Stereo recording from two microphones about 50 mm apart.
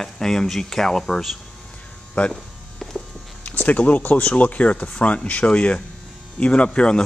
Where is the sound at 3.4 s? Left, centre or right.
Left.